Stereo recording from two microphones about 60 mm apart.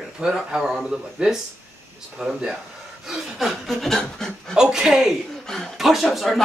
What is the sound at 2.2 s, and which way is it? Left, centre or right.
A man's voice, centre.